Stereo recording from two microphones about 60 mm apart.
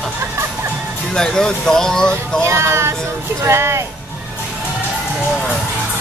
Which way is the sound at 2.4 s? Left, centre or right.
Right.